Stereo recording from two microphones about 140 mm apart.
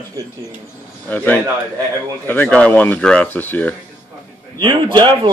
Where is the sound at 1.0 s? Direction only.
10° left (ahead or behind).